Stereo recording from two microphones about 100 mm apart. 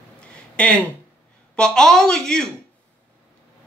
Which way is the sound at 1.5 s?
5° left (ahead or behind).